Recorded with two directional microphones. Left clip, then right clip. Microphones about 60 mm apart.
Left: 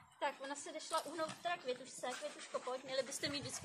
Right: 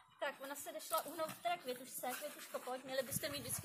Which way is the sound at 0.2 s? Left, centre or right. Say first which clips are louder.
Left 2 dB; centre.